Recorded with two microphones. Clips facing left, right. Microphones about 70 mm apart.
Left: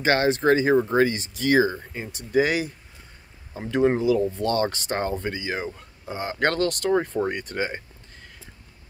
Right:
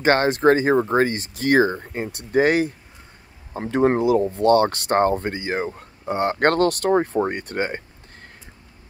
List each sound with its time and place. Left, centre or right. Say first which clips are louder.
0.0 s speech: right 4 dB; right